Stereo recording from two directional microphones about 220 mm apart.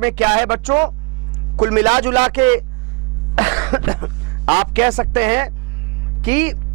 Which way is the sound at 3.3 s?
10° right (ahead or behind).